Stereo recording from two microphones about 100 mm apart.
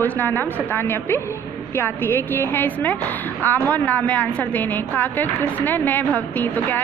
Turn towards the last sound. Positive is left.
turn(degrees=20)  # may be behind; listen again after turning